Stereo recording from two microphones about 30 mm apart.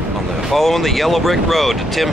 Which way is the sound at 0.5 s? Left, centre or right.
Centre.